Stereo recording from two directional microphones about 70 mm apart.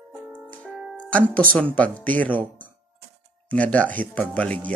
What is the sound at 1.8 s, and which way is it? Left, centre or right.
Speech, left.